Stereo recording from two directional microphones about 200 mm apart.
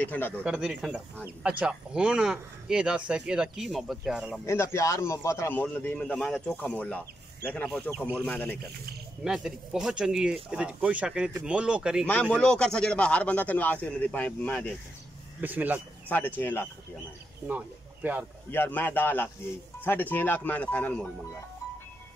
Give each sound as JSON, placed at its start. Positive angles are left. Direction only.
{"t": 0.0, "sound": "speech", "side_deg": 10}
{"t": 0.4, "sound": "speech", "side_deg": -5}
{"t": 4.5, "sound": "speech", "side_deg": 15}
{"t": 9.2, "sound": "speech", "side_deg": 0}
{"t": 15.4, "sound": "speech", "side_deg": -10}
{"t": 16.1, "sound": "speech", "side_deg": 10}
{"t": 17.5, "sound": "speech", "side_deg": -10}
{"t": 18.5, "sound": "speech", "side_deg": 10}